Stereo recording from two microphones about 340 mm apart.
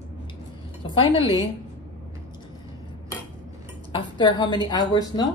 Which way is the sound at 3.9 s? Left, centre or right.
Centre.